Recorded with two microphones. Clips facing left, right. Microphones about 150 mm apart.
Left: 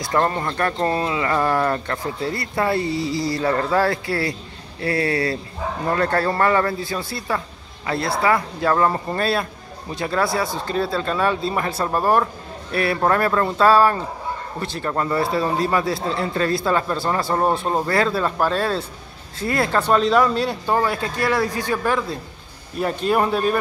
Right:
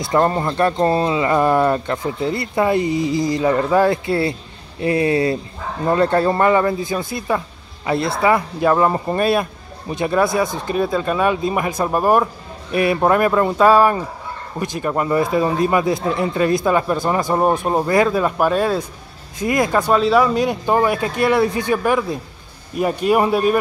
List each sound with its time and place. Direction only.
0.0 s speech: 25° right (ahead or behind)